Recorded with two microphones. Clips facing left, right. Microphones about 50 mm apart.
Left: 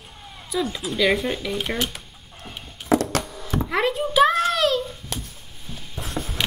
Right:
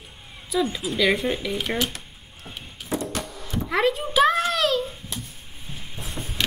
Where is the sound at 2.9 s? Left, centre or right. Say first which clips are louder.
Left 7 dB; left.